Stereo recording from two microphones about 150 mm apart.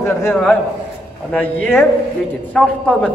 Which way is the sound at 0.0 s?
15° left (ahead or behind).